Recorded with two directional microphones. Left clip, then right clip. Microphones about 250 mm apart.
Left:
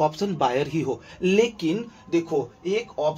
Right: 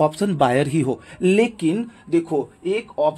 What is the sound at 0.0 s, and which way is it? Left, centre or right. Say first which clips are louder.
A man's voice: right 4 dB; right.